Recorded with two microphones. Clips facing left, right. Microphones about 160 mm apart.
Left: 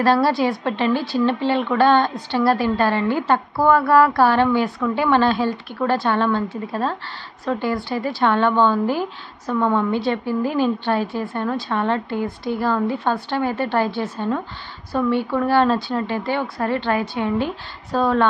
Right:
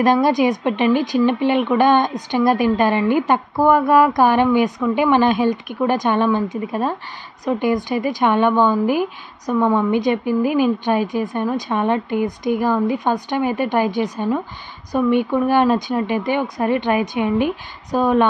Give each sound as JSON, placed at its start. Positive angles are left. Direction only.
{"t": 0.0, "sound": "a woman's voice", "side_deg": -15}